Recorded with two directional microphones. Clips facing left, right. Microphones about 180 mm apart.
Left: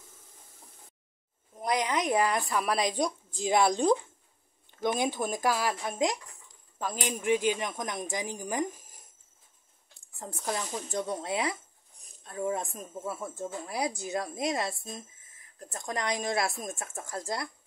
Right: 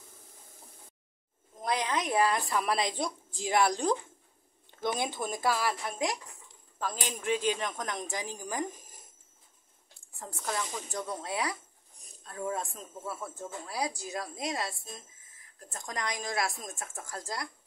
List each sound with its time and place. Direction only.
1.6 s speech: 15° left (ahead or behind)
10.1 s speech: 20° left (ahead or behind)